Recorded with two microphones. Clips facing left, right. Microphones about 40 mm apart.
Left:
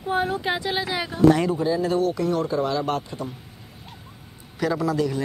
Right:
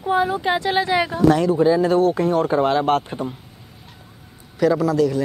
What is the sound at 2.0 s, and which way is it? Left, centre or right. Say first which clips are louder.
Speech: right 5 dB; right.